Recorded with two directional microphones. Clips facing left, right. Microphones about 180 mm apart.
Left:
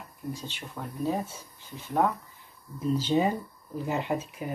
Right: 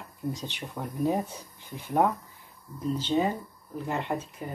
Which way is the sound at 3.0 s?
10° left (ahead or behind).